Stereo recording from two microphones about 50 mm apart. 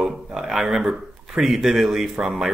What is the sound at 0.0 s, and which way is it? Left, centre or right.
Speech, centre.